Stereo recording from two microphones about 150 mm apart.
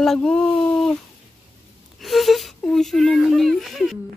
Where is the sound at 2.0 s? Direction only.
Centre (ahead or behind).